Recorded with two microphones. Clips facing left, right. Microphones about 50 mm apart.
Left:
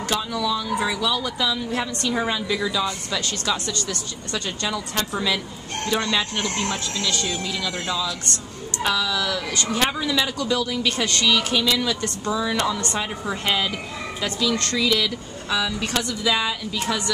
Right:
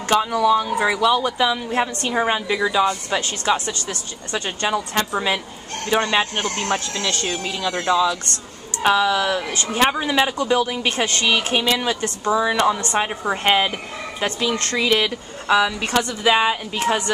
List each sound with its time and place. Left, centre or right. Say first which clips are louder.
0.1 s a woman's voice: right 9 dB; right
13.4 s a woman's voice: right 6 dB; right